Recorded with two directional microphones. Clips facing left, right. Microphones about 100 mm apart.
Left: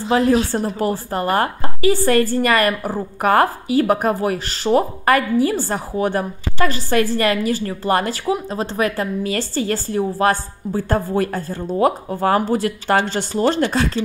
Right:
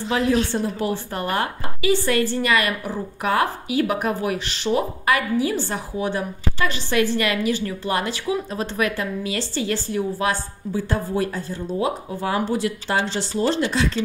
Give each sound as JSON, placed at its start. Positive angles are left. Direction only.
{"t": 0.1, "sound": "a woman's voice", "side_deg": 40}
{"t": 8.3, "sound": "a woman's voice", "side_deg": 35}